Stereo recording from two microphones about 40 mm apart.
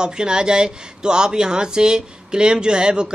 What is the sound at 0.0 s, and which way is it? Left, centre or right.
Speech, centre.